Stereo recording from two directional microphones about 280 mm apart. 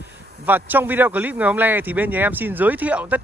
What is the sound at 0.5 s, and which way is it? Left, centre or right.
A man's voice, centre.